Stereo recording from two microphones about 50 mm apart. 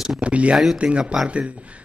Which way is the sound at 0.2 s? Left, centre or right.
Right.